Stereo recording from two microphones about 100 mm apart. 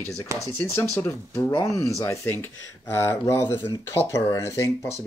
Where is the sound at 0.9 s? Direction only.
25° left (ahead or behind).